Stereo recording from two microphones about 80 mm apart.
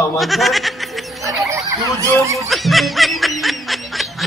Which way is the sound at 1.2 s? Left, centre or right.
Right.